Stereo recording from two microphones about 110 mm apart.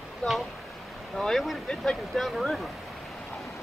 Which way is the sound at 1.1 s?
5° left (ahead or behind).